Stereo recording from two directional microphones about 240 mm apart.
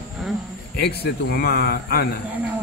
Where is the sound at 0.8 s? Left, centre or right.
Left.